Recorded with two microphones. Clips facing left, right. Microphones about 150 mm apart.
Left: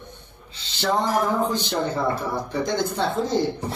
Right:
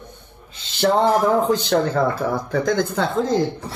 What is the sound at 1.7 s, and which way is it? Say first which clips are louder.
Speech: right 6 dB; 90° right.